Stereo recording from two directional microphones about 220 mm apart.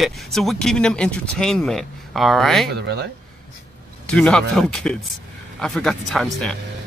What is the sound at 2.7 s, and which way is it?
Speech, 50° right (ahead or behind).